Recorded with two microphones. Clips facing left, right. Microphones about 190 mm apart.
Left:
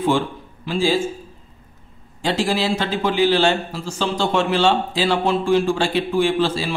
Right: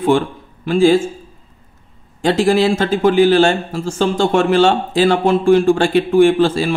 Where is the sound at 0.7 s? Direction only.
55° right (ahead or behind).